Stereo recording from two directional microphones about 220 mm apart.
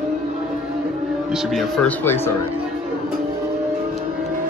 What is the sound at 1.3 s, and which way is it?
Speech, centre (ahead or behind).